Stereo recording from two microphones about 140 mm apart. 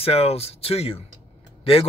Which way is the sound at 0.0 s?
45° left (ahead or behind).